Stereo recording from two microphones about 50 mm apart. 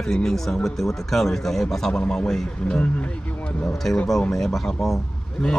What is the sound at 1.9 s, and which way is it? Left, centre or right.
A man's voice, left.